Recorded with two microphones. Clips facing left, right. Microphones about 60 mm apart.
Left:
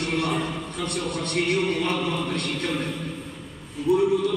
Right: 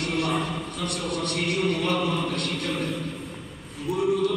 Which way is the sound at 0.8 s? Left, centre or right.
Left.